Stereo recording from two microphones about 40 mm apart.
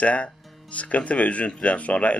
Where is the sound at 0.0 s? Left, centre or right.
Left.